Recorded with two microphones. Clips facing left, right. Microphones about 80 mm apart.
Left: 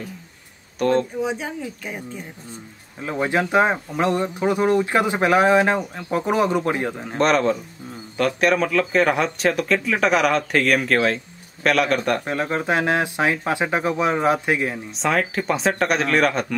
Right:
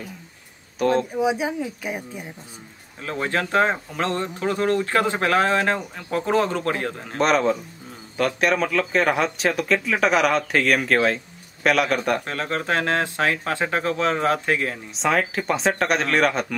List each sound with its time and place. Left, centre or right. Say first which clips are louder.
0.7 s speech: left 1 dB; centre
3.0 s speech: left 3 dB; centre
7.2 s speech: left 1 dB; centre
12.3 s speech: left 3 dB; centre
15.0 s speech: even; centre